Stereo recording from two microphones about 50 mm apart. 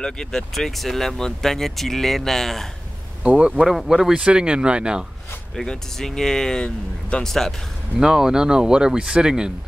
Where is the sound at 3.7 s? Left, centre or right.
Centre.